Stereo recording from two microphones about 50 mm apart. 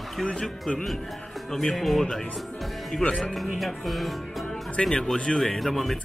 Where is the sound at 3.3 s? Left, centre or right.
Centre.